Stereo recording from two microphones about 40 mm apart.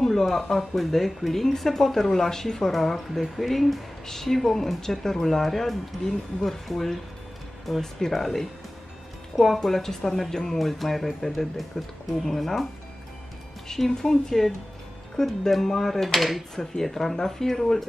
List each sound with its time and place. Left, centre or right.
0.0 s speech: centre
10.6 s speech: centre
13.7 s speech: centre